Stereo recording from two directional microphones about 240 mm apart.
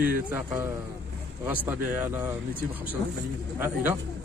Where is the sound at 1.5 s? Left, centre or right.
Centre.